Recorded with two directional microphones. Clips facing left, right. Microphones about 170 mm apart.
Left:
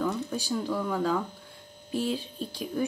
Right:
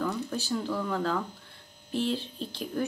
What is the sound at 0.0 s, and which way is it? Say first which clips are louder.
Speech: left 1 dB; 15° left (ahead or behind).